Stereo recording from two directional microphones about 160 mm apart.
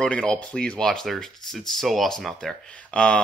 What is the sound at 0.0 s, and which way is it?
Speech, 5° left (ahead or behind).